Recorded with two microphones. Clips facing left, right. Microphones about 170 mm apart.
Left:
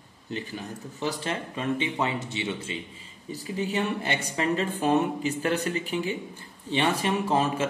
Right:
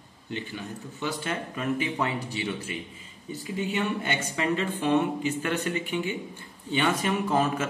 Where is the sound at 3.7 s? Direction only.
35° left (ahead or behind).